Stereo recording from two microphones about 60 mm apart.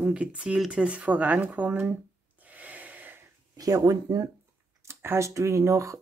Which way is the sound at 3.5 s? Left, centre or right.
Right.